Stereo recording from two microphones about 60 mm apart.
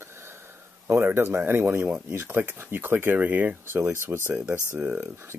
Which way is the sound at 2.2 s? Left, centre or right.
Right.